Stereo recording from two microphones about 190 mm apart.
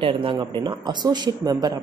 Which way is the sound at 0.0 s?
25° right (ahead or behind).